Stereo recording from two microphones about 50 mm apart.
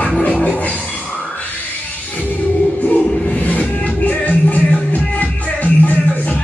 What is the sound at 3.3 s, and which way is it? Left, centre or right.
Music, left.